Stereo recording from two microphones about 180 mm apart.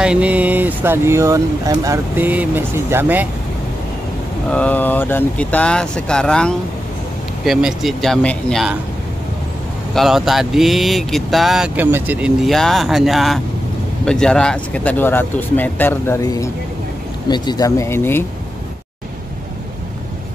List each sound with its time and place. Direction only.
0.0 s speech: 5° right (ahead or behind)
4.5 s speech: 5° left (ahead or behind)
9.9 s speech: centre (ahead or behind)